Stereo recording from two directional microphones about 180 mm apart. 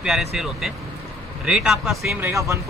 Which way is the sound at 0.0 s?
Centre (ahead or behind).